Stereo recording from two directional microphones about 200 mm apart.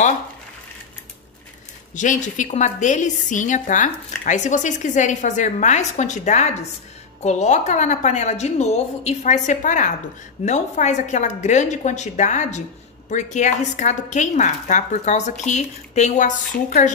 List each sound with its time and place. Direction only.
2.0 s a woman's voice: 40° left (ahead or behind)